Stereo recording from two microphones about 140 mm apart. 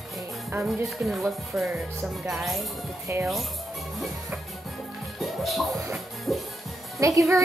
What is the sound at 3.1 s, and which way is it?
Speech, 20° right (ahead or behind).